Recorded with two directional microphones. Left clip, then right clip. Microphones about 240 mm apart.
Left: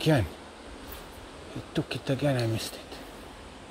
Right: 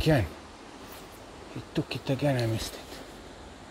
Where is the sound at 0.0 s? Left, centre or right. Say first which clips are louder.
Even; centre.